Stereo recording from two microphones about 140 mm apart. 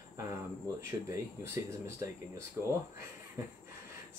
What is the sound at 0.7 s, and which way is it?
Speech, 20° right (ahead or behind).